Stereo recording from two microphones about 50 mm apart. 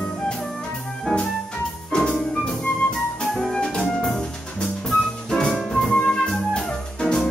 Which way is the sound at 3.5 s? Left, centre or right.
Centre.